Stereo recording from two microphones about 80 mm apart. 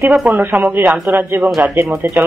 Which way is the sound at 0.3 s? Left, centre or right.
Right.